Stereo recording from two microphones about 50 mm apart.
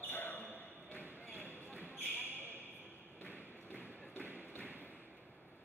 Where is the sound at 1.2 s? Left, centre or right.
Left.